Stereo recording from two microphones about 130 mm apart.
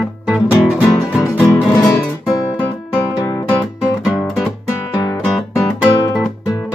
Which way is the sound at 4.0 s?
5° right (ahead or behind).